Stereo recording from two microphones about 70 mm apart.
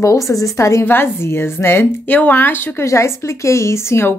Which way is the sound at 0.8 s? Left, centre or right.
Left.